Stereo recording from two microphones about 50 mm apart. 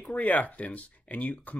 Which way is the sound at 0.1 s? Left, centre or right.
Left.